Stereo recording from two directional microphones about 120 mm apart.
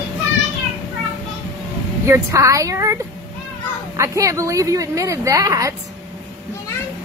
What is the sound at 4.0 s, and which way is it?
Speech, 25° right (ahead or behind).